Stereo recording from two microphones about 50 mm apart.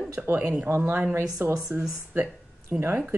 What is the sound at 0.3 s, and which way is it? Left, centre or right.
Speech, right.